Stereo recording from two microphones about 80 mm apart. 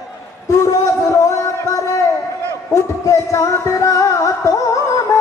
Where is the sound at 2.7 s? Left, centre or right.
Left.